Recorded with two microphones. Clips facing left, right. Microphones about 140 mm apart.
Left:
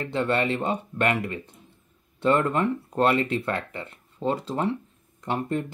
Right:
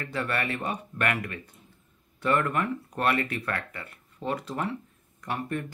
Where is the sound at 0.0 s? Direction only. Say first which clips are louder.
Left 6 dB; 25° left (ahead or behind).